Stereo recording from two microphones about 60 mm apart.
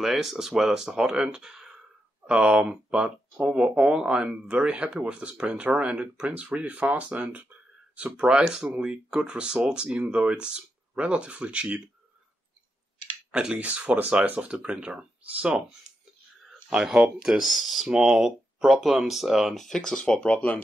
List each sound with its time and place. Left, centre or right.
0.0 s speech: centre
13.3 s speech: centre
16.7 s speech: centre
19.5 s speech: centre